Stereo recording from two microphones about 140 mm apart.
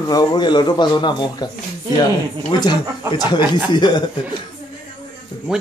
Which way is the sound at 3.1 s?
30° left (ahead or behind).